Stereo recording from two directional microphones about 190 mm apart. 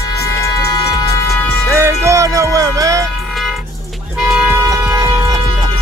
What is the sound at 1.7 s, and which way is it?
Speech, 15° right (ahead or behind).